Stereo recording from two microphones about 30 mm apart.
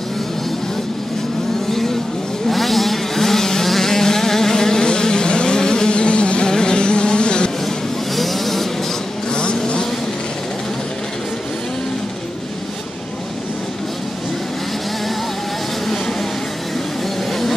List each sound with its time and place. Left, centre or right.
1.7 s vehicle: centre
4.6 s insect: left
6.5 s a sound: left
8.2 s vehicle: centre
9.3 s vehicle: left